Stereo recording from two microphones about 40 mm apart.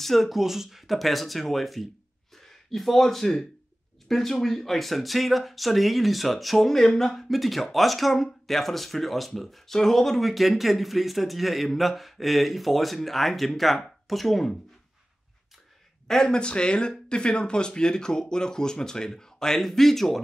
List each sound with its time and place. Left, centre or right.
0.0 s speech: centre
6.7 s speech: centre
14.0 s chopping: centre
16.1 s speech: centre